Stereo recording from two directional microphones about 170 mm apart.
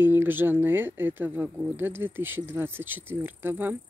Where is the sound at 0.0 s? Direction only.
10° right (ahead or behind).